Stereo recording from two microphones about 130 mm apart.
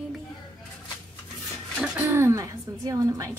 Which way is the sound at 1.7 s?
10° right (ahead or behind).